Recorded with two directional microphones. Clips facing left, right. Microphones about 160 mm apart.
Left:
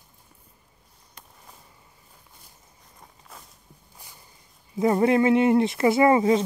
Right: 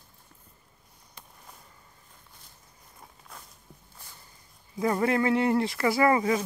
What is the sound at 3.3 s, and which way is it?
Walk, 5° left (ahead or behind).